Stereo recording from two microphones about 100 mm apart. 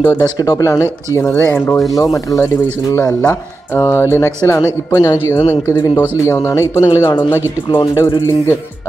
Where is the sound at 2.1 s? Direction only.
30° left (ahead or behind).